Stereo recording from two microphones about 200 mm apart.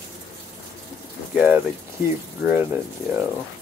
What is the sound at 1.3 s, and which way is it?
Speech, 10° right (ahead or behind).